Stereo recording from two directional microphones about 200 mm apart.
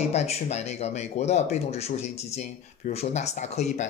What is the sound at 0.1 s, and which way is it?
Speech, 35° left (ahead or behind).